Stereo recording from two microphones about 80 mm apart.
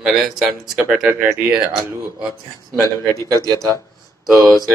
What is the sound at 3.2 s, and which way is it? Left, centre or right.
Speech, right.